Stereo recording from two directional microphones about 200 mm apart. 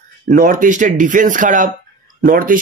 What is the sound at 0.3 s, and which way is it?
Speech, 40° right (ahead or behind).